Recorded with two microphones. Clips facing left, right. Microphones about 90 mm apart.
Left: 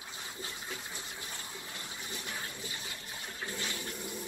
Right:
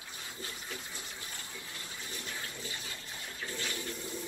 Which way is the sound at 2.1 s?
20° left (ahead or behind).